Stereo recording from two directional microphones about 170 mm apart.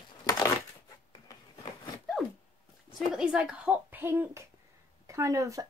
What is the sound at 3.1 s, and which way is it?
Speech, 5° right (ahead or behind).